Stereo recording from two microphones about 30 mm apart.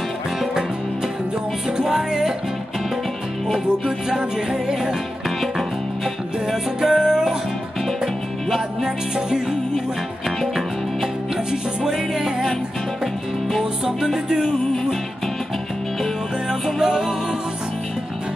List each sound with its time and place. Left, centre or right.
1.8 s music: right
3.4 s music: centre
4.2 s music: right
6.4 s music: centre
7.8 s music: centre
8.8 s music: centre
11.8 s music: right
14.0 s music: centre
16.4 s music: centre